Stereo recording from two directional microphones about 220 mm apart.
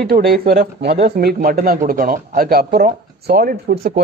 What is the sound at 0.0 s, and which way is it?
Speech, 45° right (ahead or behind).